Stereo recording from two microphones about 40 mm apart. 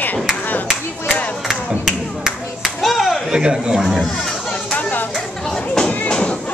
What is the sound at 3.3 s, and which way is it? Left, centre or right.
Speech, centre.